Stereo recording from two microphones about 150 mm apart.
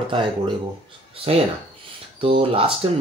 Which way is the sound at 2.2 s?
35° right (ahead or behind).